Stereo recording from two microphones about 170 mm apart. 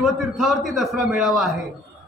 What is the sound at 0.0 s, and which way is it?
A man's voice, centre (ahead or behind).